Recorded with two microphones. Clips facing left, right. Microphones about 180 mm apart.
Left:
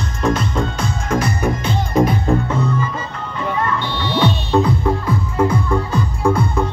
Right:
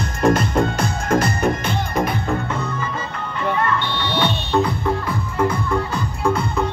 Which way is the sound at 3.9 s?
65° right (ahead or behind).